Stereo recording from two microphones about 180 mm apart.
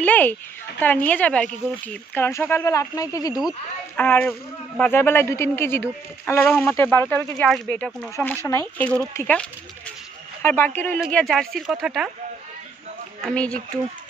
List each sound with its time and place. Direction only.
0.0 s speech: 10° left (ahead or behind)
3.9 s speech: 10° left (ahead or behind)
13.2 s speech: 5° left (ahead or behind)